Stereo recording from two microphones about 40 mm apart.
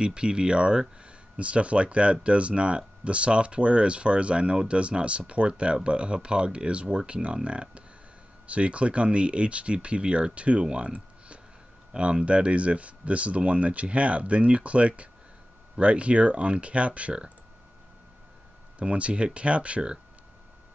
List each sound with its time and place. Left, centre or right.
0.0 s speech: right
18.8 s speech: right